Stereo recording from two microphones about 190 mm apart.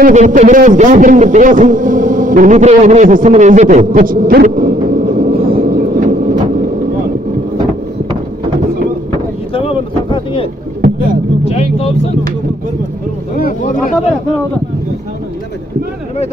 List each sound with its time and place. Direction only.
0.0 s a man's voice: 40° right (ahead or behind)
9.5 s boat: 30° left (ahead or behind)
11.4 s vehicle: 30° left (ahead or behind)
13.4 s a sound: 45° left (ahead or behind)